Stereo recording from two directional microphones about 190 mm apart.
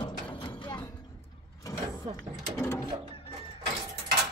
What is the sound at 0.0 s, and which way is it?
Music, 25° left (ahead or behind).